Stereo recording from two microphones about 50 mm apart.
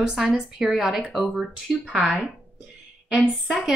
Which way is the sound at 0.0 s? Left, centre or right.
Centre.